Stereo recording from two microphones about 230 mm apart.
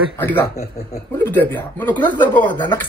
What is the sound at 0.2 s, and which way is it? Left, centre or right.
Speech, centre.